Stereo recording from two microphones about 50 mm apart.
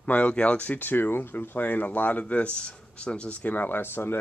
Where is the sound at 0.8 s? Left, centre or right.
Left.